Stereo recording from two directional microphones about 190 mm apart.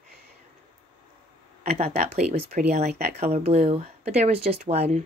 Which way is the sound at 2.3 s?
55° right (ahead or behind).